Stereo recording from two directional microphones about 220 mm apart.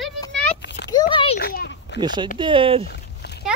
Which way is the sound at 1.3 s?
45° left (ahead or behind).